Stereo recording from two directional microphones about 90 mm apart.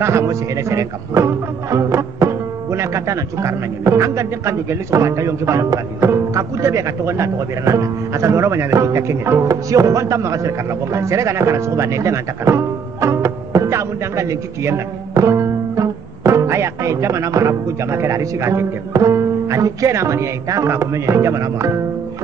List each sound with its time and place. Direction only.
0.0 s speech: 30° right (ahead or behind)